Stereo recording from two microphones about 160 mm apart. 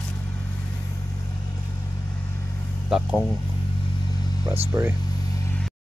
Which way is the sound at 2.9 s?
5° right (ahead or behind).